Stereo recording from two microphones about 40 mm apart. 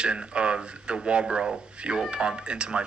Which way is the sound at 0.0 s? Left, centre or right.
Right.